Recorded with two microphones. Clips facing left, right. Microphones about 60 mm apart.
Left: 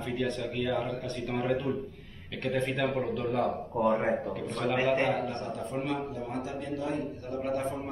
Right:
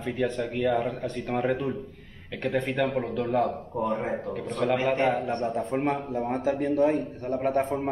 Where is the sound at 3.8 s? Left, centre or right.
Left.